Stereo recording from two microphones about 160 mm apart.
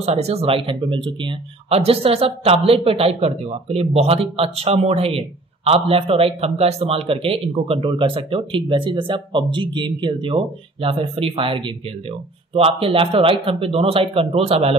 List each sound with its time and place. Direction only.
0.0 s speech: 40° right (ahead or behind)